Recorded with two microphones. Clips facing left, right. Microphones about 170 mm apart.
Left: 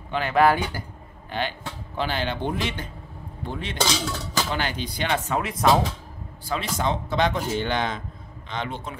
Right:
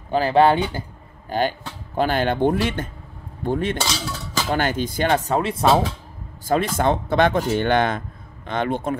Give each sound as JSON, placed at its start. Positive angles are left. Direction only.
{"t": 0.1, "sound": "speech", "side_deg": -35}
{"t": 1.3, "sound": "speech", "side_deg": -40}
{"t": 6.4, "sound": "speech", "side_deg": -50}